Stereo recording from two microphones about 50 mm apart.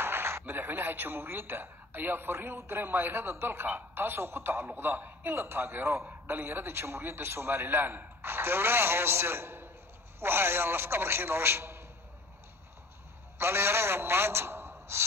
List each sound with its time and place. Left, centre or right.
0.0 s a man's voice: right
13.4 s a man's voice: right